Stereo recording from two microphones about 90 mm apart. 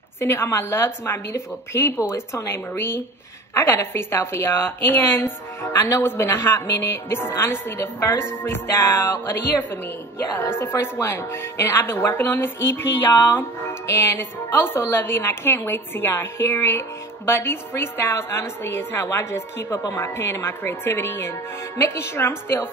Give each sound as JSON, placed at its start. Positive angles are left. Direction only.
{"t": 0.2, "sound": "speech", "side_deg": 30}